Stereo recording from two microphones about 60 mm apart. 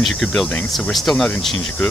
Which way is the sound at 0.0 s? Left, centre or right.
Centre.